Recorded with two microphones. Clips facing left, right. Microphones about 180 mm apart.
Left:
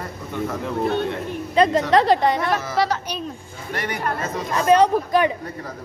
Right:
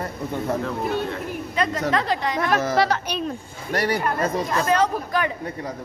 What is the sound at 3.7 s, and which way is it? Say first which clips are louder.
Speech: right 4 dB; 35° right (ahead or behind).